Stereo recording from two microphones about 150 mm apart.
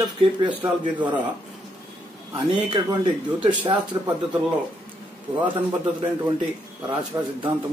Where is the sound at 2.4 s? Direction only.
30° right (ahead or behind).